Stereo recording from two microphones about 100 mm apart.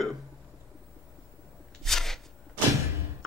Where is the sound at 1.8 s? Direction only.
5° left (ahead or behind).